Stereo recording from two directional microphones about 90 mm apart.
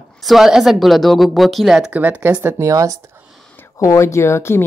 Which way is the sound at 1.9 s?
15° right (ahead or behind).